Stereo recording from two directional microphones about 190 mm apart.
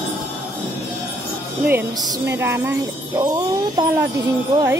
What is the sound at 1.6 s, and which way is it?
Speech, 15° right (ahead or behind).